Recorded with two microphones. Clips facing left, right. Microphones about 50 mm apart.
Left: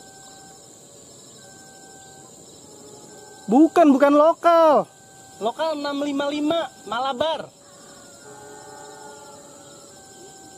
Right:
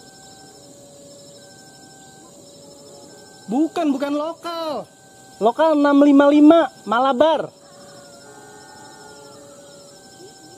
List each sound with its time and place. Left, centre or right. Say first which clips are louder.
3.4 s speech: left 5 dB; centre
3.8 s speech: left 7 dB; left
5.4 s speech: right 9 dB; centre
8.3 s music: left 1 dB; centre